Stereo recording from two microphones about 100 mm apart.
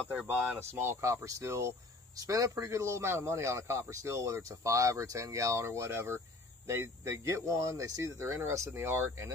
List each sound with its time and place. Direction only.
0.5 s a man's voice: 25° right (ahead or behind)